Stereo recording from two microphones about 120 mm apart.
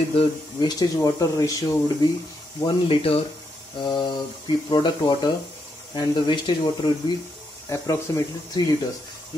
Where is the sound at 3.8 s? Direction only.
40° left (ahead or behind).